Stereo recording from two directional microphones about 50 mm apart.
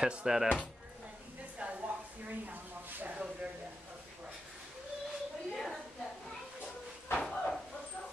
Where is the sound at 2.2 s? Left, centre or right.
Right.